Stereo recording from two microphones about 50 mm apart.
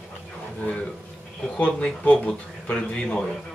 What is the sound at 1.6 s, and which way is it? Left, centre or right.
Speech, left.